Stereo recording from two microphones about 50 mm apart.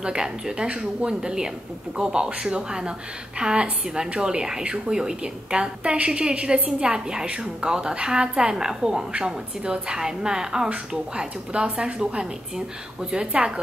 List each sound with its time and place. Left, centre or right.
0.0 s a woman's voice: centre